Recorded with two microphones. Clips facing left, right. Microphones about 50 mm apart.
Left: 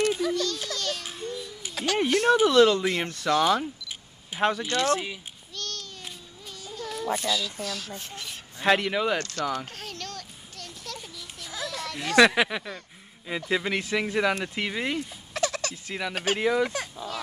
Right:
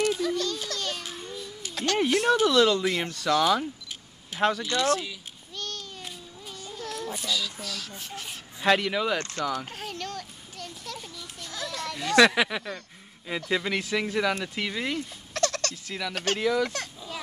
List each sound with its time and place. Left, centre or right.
0.3 s a sound: centre
1.8 s speech: centre
2.2 s speech: centre
4.6 s speech: left
5.6 s babbling: centre
6.6 s baby cry: centre
7.2 s speech: centre
7.9 s a sound: centre
8.6 s speech: centre
9.2 s speech: right
9.8 s a sound: centre
11.4 s children playing: centre
12.1 s speech: centre